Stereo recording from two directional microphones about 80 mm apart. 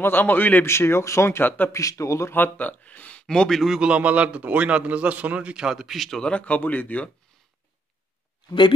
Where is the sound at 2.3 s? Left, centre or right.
Left; by 3.8 s centre.